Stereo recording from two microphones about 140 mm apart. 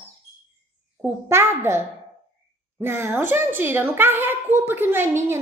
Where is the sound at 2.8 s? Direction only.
15° right (ahead or behind).